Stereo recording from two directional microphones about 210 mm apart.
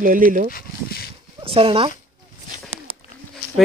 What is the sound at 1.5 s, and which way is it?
Speech, 25° right (ahead or behind).